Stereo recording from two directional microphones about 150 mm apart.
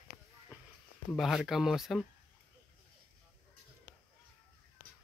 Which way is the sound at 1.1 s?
Centre (ahead or behind).